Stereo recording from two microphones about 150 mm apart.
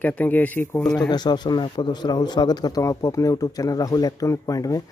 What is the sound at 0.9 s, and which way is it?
Speech, 30° left (ahead or behind).